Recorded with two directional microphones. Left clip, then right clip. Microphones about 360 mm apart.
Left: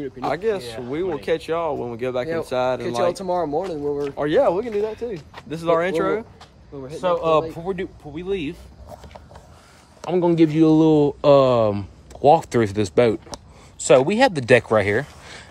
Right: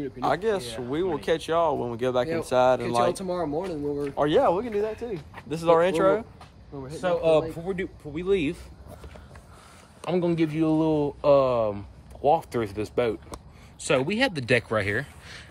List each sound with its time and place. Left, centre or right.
0.0 s speech: centre
6.8 s speech: centre
8.1 s speech: centre
10.0 s a man's voice: centre
10.3 s speech: left
13.7 s speech: centre